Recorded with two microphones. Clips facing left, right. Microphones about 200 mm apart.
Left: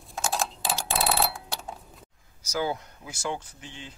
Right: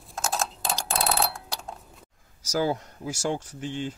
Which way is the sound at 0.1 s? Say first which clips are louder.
Even; centre (ahead or behind).